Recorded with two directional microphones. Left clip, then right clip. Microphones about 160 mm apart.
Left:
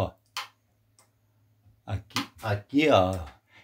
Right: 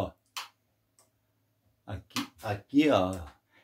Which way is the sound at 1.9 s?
20° left (ahead or behind).